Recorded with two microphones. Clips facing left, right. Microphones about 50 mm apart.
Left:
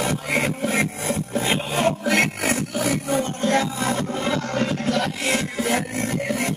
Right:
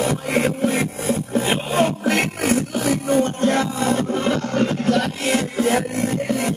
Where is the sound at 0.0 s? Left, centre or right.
Left.